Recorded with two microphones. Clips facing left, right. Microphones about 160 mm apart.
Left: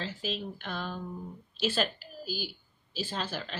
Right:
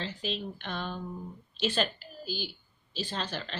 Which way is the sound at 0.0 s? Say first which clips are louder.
Even; 5° left (ahead or behind).